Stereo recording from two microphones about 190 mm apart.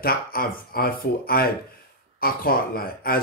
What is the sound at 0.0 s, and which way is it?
Speech, 50° left (ahead or behind).